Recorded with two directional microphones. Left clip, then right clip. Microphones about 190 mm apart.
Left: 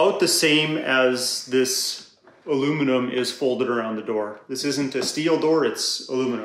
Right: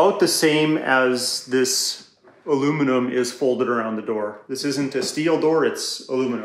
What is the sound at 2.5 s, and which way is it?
Speech, centre (ahead or behind).